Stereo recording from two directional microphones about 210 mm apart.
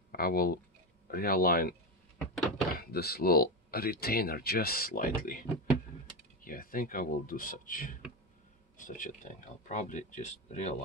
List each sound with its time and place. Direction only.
0.1 s speech: 45° left (ahead or behind)
2.1 s a sound: centre (ahead or behind)
2.7 s speech: 45° left (ahead or behind)